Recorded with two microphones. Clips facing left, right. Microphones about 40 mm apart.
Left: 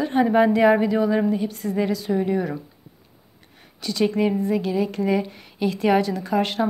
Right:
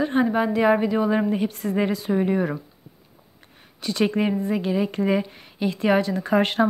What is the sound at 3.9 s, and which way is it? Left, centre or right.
A woman's voice, right.